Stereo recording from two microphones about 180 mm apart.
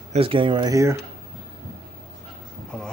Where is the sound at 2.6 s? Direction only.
5° left (ahead or behind).